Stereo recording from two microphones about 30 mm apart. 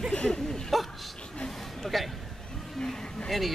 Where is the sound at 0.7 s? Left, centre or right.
Centre.